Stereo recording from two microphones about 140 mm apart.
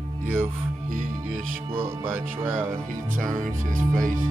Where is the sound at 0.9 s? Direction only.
65° right (ahead or behind).